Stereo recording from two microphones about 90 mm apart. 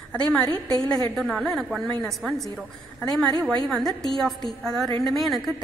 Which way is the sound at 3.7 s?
5° left (ahead or behind).